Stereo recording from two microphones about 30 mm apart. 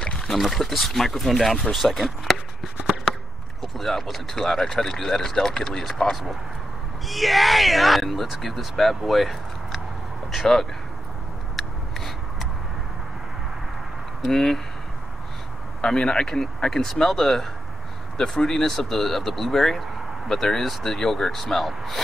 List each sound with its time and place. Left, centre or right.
0.6 s speech: centre
3.6 s speech: centre
7.1 s speech: centre
11.5 s a sound: centre
14.2 s speech: centre
15.8 s speech: left; by 17.5 s centre
18.1 s speech: left; by 22.0 s centre